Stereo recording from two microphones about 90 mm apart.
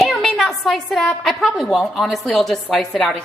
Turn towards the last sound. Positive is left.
turn(degrees=5)  # may be behind; listen again after turning